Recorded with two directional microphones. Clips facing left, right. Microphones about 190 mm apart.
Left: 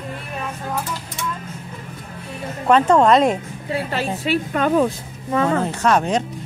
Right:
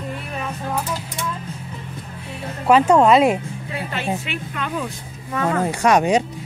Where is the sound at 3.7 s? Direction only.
35° left (ahead or behind).